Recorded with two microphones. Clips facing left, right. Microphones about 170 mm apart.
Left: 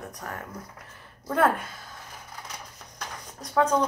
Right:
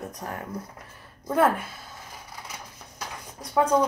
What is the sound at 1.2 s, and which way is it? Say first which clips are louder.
Speech: right 1 dB; 10° right (ahead or behind).